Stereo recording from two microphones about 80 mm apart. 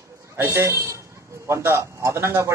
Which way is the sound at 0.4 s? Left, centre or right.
Right.